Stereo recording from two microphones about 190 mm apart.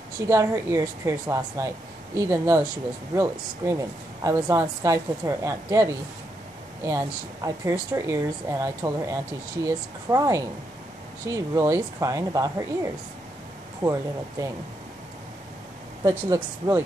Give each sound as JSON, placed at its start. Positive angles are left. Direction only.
{"t": 0.2, "sound": "a woman's voice", "side_deg": -15}
{"t": 13.8, "sound": "speech", "side_deg": -25}
{"t": 16.0, "sound": "a woman's voice", "side_deg": -20}